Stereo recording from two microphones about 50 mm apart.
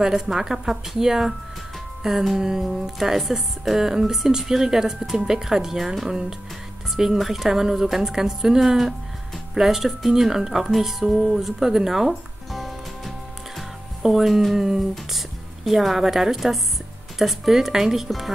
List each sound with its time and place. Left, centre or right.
0.0 s speech: centre
12.5 s music: centre
13.6 s speech: centre